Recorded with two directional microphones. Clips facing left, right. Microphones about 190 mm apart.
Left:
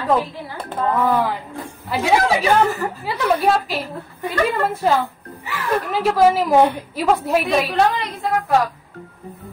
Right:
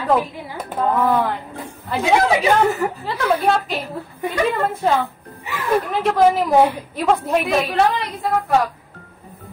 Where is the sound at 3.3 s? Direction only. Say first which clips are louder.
Left 1 dB; centre (ahead or behind).